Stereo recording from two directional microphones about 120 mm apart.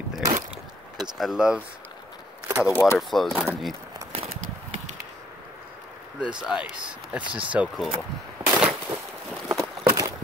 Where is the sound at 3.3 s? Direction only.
15° right (ahead or behind).